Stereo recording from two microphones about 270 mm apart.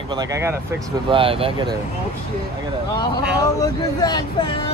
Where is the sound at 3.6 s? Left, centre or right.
Centre.